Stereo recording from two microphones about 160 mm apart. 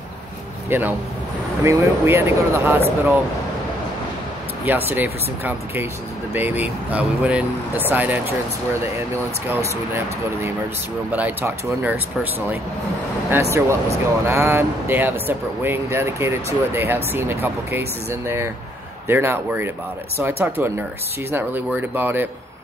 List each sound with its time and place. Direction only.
0.7 s speech: 10° right (ahead or behind)
4.6 s speech: 15° right (ahead or behind)
9.5 s speech: 15° right (ahead or behind)
21.9 s speech: 15° right (ahead or behind)